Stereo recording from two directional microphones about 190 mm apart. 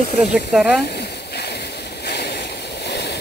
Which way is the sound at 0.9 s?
60° left (ahead or behind).